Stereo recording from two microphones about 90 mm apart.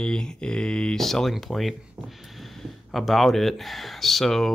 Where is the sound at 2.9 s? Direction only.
Centre (ahead or behind).